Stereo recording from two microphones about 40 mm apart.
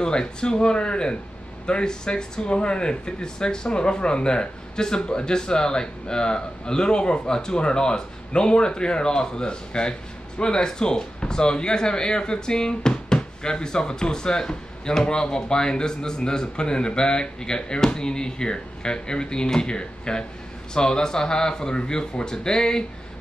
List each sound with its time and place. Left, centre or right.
0.0 s speech: left